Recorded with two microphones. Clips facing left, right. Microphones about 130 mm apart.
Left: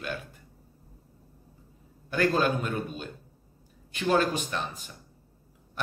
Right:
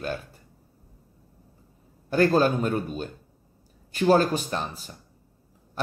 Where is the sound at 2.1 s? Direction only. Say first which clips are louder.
Right 5 dB; 35° right (ahead or behind).